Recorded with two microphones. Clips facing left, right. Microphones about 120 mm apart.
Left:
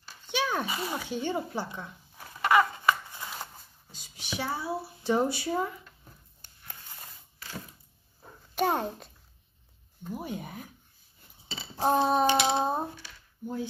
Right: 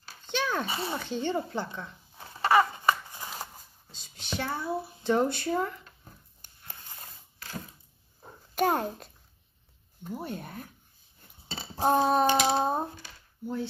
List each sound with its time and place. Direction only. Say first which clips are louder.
0.3 s a sound: even; 10° left (ahead or behind)
0.7 s speech: even; 30° right (ahead or behind)
0.9 s speech: right 2 dB; 10° left (ahead or behind)
2.1 s a sound: right 1 dB; 30° right (ahead or behind)
3.1 s scissors: even; 15° right (ahead or behind)
3.9 s speech: right 1 dB; 10° left (ahead or behind)
8.5 s a child's voice: right 1 dB; centre (ahead or behind)
10.1 s speech: even; 10° left (ahead or behind)
11.8 s a sound: right 1 dB; 10° right (ahead or behind)
12.1 s a child's voice: right 1 dB; centre (ahead or behind)